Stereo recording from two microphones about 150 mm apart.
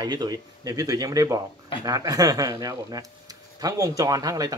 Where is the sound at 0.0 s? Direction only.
25° right (ahead or behind).